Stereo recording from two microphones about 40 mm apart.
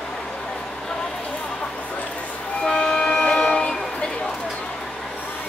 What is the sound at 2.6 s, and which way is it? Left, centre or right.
Train, centre.